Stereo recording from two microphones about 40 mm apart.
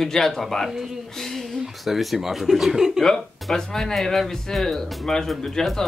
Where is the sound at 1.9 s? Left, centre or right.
Centre.